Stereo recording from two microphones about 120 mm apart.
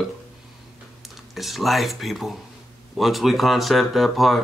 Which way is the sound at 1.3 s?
Centre (ahead or behind).